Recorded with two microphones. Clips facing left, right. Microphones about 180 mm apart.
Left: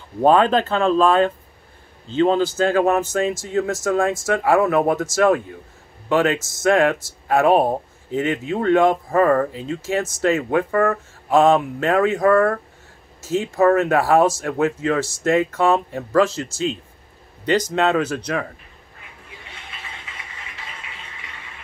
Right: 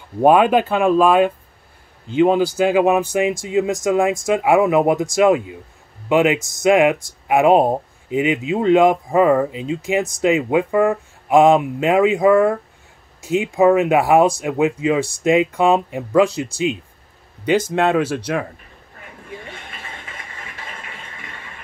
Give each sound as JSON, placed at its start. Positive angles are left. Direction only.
{"t": 0.2, "sound": "speech", "side_deg": -10}
{"t": 17.5, "sound": "speech", "side_deg": -10}
{"t": 18.9, "sound": "a sound", "side_deg": -45}